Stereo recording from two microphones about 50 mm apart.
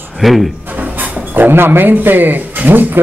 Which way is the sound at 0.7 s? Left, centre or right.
Right.